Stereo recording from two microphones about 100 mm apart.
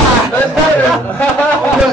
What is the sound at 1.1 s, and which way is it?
Speech, 15° left (ahead or behind).